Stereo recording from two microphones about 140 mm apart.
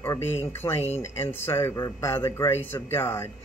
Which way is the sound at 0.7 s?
50° left (ahead or behind).